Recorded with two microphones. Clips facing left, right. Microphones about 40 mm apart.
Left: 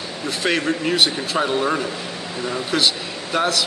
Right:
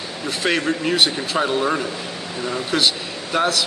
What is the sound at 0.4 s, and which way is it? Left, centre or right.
A man's voice, centre.